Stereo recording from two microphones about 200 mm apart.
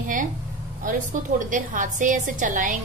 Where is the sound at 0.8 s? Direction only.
40° right (ahead or behind).